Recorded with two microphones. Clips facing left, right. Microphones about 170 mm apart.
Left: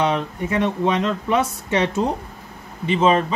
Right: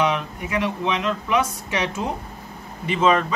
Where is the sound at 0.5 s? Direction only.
30° left (ahead or behind).